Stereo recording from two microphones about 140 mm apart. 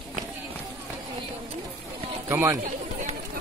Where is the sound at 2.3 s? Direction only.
15° right (ahead or behind).